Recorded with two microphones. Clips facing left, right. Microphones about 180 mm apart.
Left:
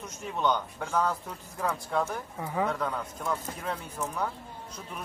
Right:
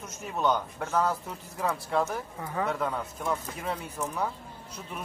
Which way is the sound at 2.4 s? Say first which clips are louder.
Left 2 dB; 10° left (ahead or behind).